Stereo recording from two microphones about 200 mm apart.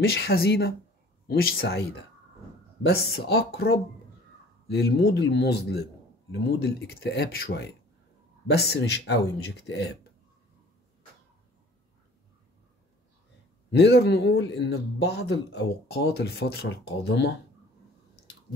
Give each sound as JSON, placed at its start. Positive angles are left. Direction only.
{"t": 0.0, "sound": "speech", "side_deg": 50}
{"t": 2.9, "sound": "a man's voice", "side_deg": 55}
{"t": 13.7, "sound": "a man's voice", "side_deg": 55}